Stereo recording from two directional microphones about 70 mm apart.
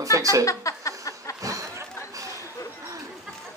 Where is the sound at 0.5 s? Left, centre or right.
Left.